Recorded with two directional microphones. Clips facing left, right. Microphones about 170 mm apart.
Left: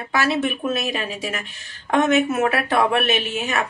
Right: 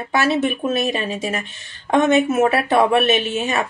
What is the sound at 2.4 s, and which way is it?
Speech, 20° right (ahead or behind).